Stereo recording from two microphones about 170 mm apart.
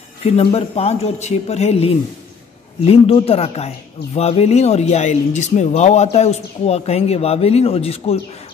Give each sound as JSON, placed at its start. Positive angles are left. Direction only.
{"t": 0.2, "sound": "speech", "side_deg": 35}